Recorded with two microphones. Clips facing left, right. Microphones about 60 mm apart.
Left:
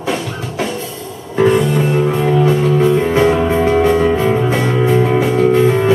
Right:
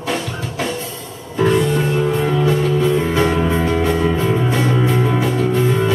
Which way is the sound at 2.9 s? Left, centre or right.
Left.